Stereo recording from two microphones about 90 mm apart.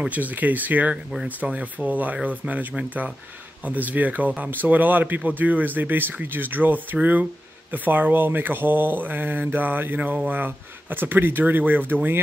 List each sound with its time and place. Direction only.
0.0 s speech: 20° right (ahead or behind)